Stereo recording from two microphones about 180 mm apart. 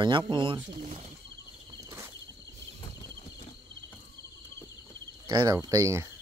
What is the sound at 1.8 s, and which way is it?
Cricket, 15° right (ahead or behind).